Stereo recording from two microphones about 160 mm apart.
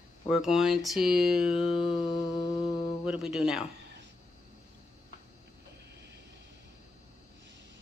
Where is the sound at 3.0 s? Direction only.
5° right (ahead or behind).